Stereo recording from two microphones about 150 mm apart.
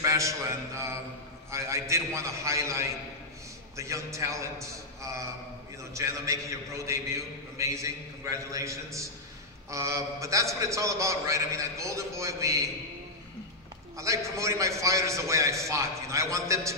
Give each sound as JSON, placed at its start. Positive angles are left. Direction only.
{"t": 0.0, "sound": "a man's voice", "side_deg": -20}
{"t": 13.9, "sound": "a man's voice", "side_deg": -20}